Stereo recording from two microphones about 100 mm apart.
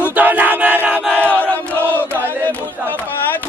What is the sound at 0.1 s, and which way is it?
Battle cry, 15° right (ahead or behind).